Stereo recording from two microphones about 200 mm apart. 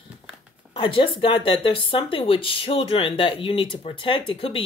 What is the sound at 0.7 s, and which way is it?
Speech, 25° left (ahead or behind).